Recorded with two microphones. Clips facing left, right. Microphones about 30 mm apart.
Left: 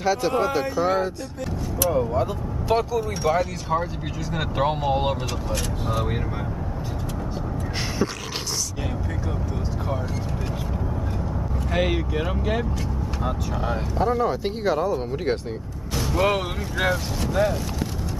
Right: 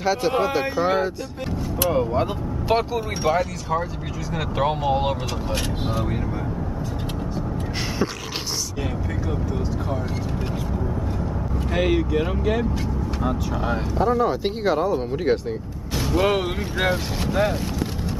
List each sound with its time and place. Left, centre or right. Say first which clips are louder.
0.0 s speech: right 1 dB; centre
1.9 s speech: right 1 dB; right
2.7 s speech: even; centre
4.3 s speech: right 1 dB; centre
11.7 s speech: right 3 dB; centre
14.4 s speech: right 2 dB; centre
15.3 s speech: right 4 dB; centre
16.9 s speech: right 1 dB; right